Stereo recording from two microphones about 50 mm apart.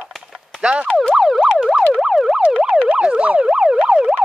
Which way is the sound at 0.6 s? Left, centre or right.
Right.